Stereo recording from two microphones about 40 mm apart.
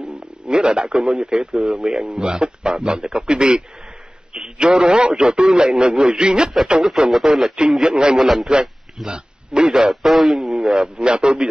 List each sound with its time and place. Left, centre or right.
0.0 s a sound: right
0.8 s a man's voice: centre
2.0 s a man's voice: right; by 7.5 s centre
7.8 s a man's voice: right
8.2 s a man's voice: centre
8.5 s a man's voice: centre
9.8 s a man's voice: centre
10.8 s a man's voice: right